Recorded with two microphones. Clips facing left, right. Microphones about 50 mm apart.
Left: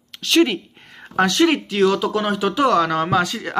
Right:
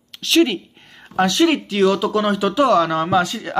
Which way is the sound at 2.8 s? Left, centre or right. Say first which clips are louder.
Right 1 dB; left.